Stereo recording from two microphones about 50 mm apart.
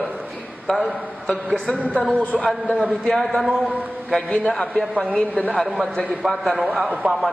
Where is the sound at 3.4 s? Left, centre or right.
Centre.